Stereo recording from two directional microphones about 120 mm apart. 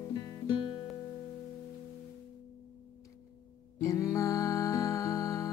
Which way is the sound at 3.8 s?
25° left (ahead or behind).